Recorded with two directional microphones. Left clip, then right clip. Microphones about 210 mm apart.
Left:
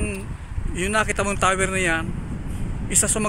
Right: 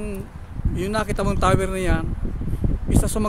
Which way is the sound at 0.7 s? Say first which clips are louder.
Left 3 dB; centre (ahead or behind).